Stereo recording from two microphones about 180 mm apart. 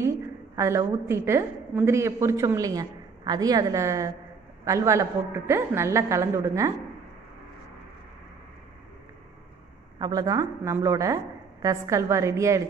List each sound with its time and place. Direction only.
0.6 s a woman's voice: 15° right (ahead or behind)
9.9 s a woman's voice: 20° right (ahead or behind)